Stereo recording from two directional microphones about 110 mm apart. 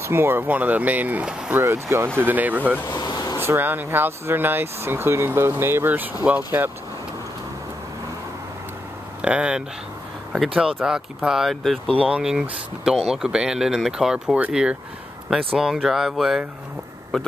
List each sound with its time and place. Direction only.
0.0 s speech: 20° right (ahead or behind)
3.0 s vehicle: 40° left (ahead or behind)
3.4 s speech: 20° right (ahead or behind)
9.2 s a man's voice: 10° right (ahead or behind)